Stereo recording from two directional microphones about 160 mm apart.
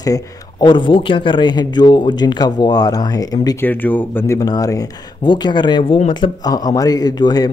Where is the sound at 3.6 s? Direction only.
10° left (ahead or behind).